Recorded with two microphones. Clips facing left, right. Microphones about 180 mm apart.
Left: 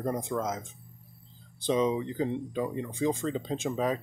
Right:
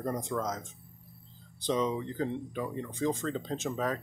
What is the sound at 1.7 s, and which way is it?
Speech, 15° left (ahead or behind).